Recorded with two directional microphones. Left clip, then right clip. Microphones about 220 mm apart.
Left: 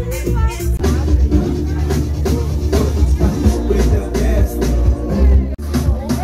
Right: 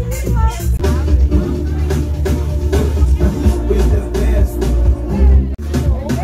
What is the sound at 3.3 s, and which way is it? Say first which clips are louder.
Music: even; 15° right (ahead or behind).